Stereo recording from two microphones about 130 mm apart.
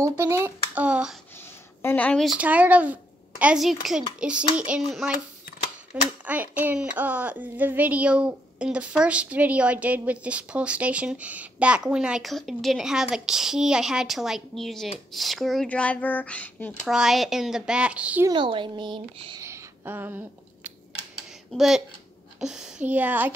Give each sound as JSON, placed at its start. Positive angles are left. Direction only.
{"t": 0.0, "sound": "speech", "side_deg": -20}
{"t": 1.8, "sound": "a woman's voice", "side_deg": 15}
{"t": 2.2, "sound": "speech", "side_deg": -10}
{"t": 6.2, "sound": "a child's voice", "side_deg": -10}
{"t": 16.8, "sound": "speech", "side_deg": -5}
{"t": 18.3, "sound": "speech", "side_deg": -40}
{"t": 19.4, "sound": "a sound", "side_deg": -20}
{"t": 21.5, "sound": "speech", "side_deg": -5}